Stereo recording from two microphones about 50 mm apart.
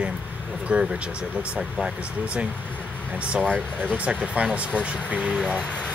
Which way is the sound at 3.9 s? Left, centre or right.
Right.